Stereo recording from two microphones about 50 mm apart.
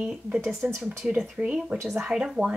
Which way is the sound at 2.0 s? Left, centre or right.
Centre.